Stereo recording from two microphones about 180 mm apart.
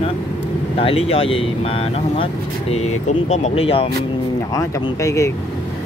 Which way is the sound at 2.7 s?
40° left (ahead or behind).